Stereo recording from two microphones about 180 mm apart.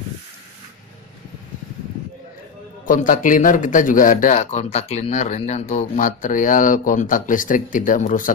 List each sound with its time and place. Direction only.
2.9 s speech: 45° left (ahead or behind)